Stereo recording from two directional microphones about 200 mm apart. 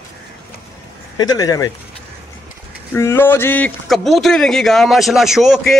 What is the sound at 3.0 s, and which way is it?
A man's voice, 10° left (ahead or behind).